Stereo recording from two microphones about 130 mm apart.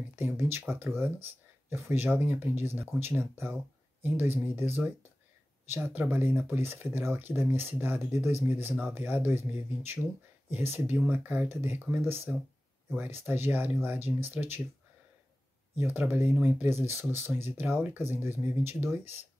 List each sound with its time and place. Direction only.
0.1 s a sound: 20° right (ahead or behind)
0.9 s speech: 20° right (ahead or behind)
10.5 s speech: 15° right (ahead or behind)
15.8 s speech: 15° right (ahead or behind)